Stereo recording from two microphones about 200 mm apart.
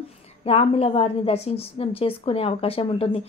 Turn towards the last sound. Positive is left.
turn(degrees=30)  # may be behind; listen again after turning